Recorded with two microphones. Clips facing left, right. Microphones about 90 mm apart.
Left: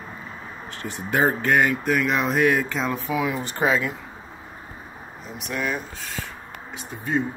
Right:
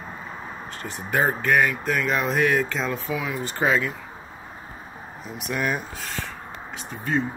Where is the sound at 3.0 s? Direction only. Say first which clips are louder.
Left 3 dB; 20° left (ahead or behind).